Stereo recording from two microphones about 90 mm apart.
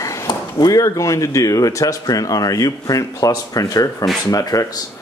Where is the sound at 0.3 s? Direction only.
45° left (ahead or behind).